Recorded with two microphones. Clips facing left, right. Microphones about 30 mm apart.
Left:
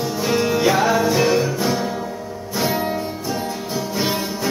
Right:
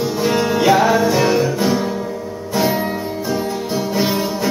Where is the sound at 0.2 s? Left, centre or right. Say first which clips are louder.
Right 1 dB; centre.